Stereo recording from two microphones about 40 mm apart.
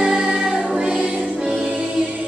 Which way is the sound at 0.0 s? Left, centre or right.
Centre.